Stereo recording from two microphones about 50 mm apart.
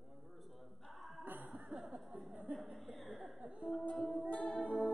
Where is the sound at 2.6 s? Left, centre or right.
Centre.